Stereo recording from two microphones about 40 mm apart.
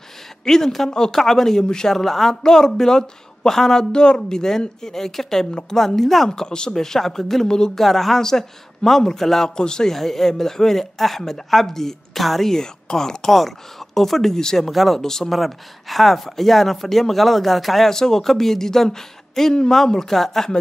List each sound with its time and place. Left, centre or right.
0.5 s speech: centre
3.9 s speech: left
6.3 s speech: centre
9.6 s a man's voice: centre
9.9 s speech: centre
14.7 s speech: centre
15.0 s speech: centre